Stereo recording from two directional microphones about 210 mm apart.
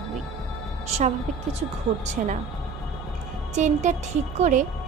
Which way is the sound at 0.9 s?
30° right (ahead or behind).